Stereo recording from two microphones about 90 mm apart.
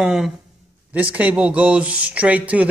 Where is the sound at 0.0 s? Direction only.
5° right (ahead or behind).